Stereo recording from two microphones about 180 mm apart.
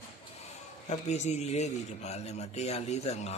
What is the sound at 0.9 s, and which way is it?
A man's voice, 40° left (ahead or behind).